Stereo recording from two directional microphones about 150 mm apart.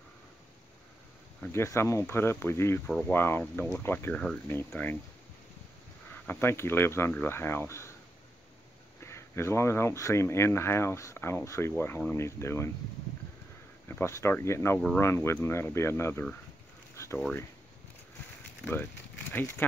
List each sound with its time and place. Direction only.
1.5 s speech: 20° left (ahead or behind)
6.2 s speech: 15° left (ahead or behind)
9.0 s speech: 15° left (ahead or behind)
13.8 s speech: 15° left (ahead or behind)
16.9 s a sound: 20° left (ahead or behind)